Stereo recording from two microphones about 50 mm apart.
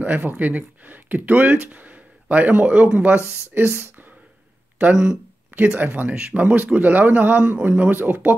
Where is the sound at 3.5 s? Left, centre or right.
Right.